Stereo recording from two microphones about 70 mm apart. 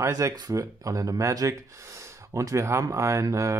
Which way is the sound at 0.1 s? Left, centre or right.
Right.